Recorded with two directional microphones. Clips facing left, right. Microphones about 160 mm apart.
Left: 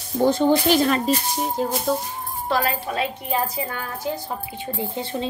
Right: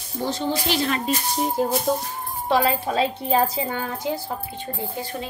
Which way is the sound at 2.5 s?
25° right (ahead or behind).